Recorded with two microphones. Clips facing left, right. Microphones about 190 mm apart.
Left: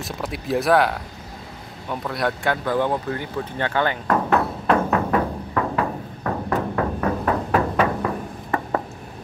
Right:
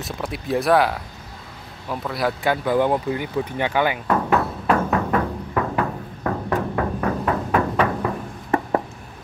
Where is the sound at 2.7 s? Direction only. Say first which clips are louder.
Right 4 dB; 15° right (ahead or behind).